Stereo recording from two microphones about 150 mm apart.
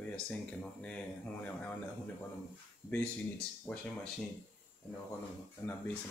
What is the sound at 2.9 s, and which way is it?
Speech, 10° left (ahead or behind).